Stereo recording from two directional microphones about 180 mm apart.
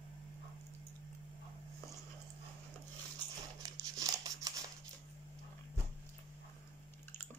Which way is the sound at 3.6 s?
20° right (ahead or behind).